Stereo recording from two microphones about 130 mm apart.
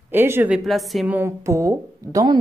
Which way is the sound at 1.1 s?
15° right (ahead or behind).